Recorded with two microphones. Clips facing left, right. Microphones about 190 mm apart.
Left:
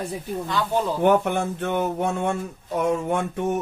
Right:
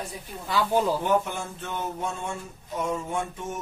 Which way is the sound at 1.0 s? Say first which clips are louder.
Left 6 dB; 65° left (ahead or behind).